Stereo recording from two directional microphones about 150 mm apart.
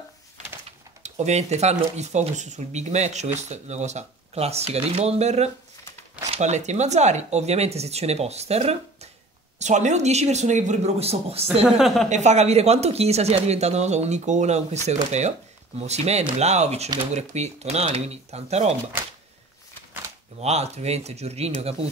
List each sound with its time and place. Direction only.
0.7 s speech: 45° right (ahead or behind)
11.6 s a woman's voice: centre (ahead or behind)
12.1 s speech: 50° right (ahead or behind)
20.3 s speech: 45° right (ahead or behind)